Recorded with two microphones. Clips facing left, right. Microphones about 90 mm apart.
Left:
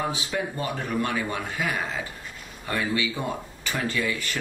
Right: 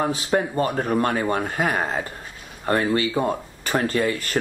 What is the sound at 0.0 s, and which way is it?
Speech, 45° right (ahead or behind).